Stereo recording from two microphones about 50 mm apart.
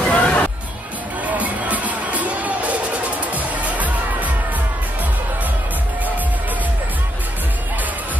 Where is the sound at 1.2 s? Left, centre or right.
Right.